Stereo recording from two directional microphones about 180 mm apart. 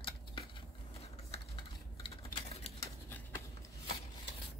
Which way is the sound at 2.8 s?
15° left (ahead or behind).